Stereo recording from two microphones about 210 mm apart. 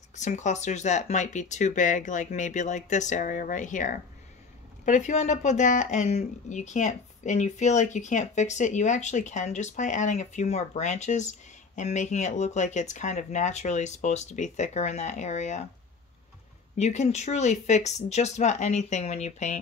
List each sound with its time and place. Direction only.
0.1 s speech: 35° left (ahead or behind)
16.7 s speech: 35° left (ahead or behind)